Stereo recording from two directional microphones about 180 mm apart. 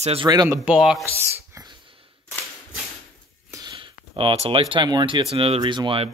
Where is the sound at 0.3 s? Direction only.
20° right (ahead or behind).